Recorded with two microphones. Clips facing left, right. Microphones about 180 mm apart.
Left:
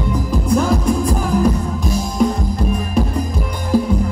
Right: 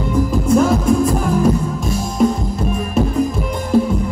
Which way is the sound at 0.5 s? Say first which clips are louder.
Right 3 dB; centre (ahead or behind).